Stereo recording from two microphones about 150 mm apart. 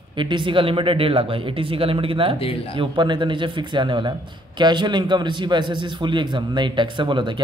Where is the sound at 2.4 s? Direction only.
40° left (ahead or behind).